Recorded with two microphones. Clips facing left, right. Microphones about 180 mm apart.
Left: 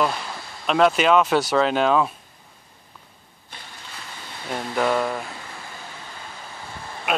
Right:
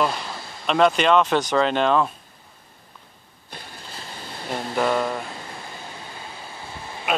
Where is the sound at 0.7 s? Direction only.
Centre (ahead or behind).